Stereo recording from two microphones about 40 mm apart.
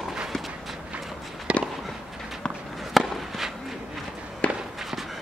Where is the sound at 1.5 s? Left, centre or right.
Right.